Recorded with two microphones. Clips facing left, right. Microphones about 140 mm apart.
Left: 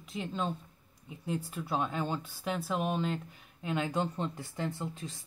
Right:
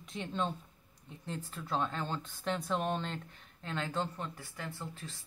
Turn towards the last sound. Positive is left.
turn(degrees=20)  # may be behind; listen again after turning